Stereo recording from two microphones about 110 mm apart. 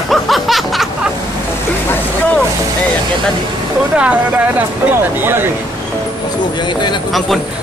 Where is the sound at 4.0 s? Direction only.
10° right (ahead or behind).